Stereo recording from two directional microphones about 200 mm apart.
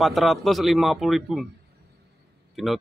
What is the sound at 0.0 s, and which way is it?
Speech, centre (ahead or behind).